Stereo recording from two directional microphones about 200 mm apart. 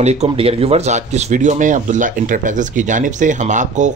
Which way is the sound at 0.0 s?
35° right (ahead or behind).